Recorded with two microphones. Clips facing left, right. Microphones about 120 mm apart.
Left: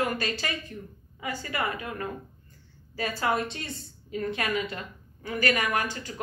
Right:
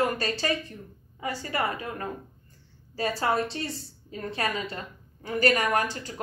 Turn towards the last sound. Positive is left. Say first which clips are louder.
# right 2 dB
turn(degrees=-40)  # may be behind; listen again after turning